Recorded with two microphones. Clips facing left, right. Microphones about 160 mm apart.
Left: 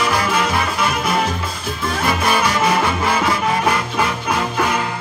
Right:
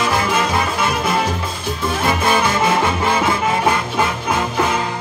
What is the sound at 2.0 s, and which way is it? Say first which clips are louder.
Music: right 1 dB; 20° right (ahead or behind).